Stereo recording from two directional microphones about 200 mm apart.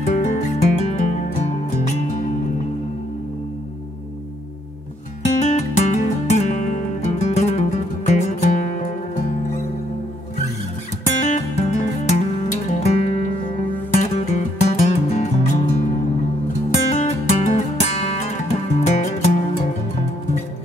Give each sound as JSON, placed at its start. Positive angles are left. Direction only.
{"t": 0.0, "sound": "music", "side_deg": 35}
{"t": 5.2, "sound": "music", "side_deg": 35}
{"t": 11.1, "sound": "music", "side_deg": 35}
{"t": 16.9, "sound": "music", "side_deg": 35}